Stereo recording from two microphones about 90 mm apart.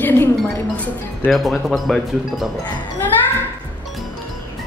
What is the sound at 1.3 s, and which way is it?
Speech, centre (ahead or behind).